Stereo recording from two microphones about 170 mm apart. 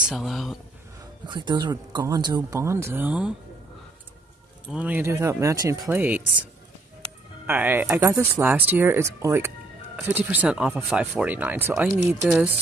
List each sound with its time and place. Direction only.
0.1 s speech: centre (ahead or behind)
1.2 s speech: 25° right (ahead or behind); by 3.3 s 10° right (ahead or behind)
4.6 s speech: 10° right (ahead or behind)
7.4 s speech: 10° right (ahead or behind)
12.3 s speech: 5° right (ahead or behind)